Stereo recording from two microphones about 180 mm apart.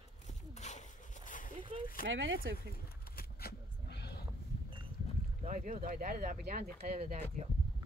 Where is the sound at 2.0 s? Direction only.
90° right.